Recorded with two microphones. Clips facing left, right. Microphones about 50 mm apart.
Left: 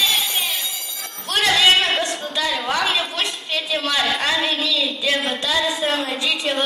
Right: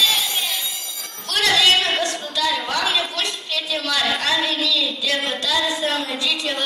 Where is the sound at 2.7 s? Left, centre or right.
Left.